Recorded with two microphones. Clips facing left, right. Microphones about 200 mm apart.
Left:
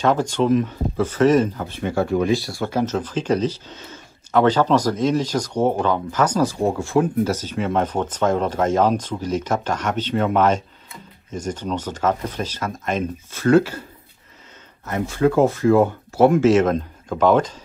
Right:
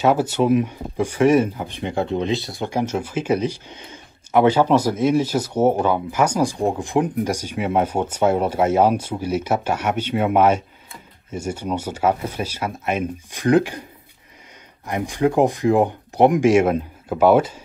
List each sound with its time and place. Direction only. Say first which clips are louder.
0.0 s speech: right 1 dB; 10° right (ahead or behind)
14.9 s speech: left 1 dB; 15° right (ahead or behind)